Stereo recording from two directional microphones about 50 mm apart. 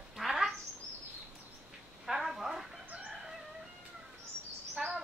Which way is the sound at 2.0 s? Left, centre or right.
Centre.